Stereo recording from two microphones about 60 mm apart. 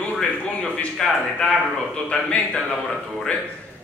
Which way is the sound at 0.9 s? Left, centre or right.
Centre.